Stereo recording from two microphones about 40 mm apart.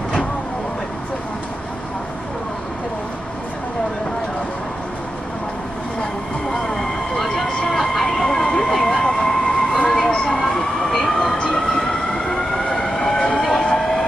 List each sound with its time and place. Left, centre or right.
6.5 s vehicle: centre
8.7 s emergency vehicle: centre
11.3 s train: centre
11.6 s vehicle: centre
13.6 s train: centre